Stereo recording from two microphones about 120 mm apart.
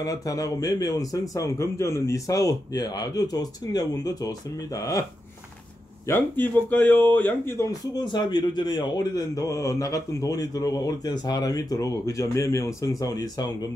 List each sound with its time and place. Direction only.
0.0 s a man's voice: 30° left (ahead or behind)
6.0 s a man's voice: 20° left (ahead or behind); by 13.7 s 35° left (ahead or behind)